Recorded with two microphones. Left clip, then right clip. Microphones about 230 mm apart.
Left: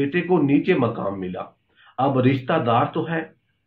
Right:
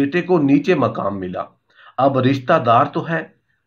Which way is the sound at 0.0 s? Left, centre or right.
Right.